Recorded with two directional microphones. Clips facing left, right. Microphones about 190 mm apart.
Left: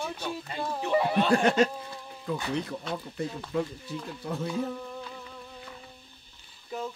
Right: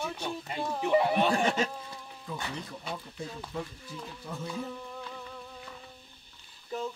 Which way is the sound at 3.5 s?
80° left.